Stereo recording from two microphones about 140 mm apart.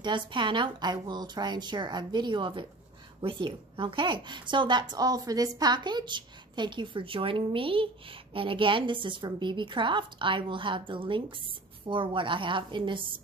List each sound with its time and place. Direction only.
0.0 s a woman's voice: 35° right (ahead or behind)